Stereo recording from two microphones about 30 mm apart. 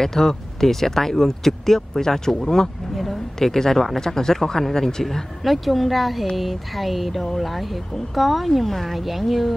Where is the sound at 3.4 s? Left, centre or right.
Centre.